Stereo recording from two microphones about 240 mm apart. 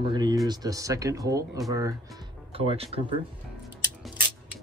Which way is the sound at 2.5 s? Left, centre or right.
Right.